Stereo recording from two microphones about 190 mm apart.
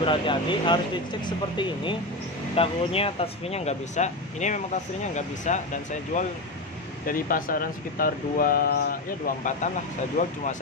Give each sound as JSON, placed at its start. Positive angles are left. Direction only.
{"t": 0.0, "sound": "speech", "side_deg": 25}